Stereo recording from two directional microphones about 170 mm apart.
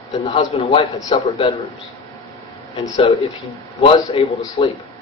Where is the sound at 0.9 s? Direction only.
20° left (ahead or behind).